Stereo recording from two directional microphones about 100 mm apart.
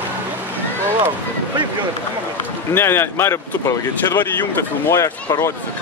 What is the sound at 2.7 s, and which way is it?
Speech, 25° left (ahead or behind).